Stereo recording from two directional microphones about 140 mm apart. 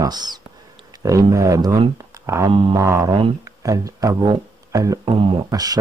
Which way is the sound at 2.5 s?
35° right (ahead or behind).